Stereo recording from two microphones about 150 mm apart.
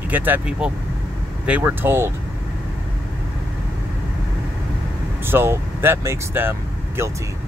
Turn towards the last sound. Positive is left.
turn(degrees=-15)  # may be behind; listen again after turning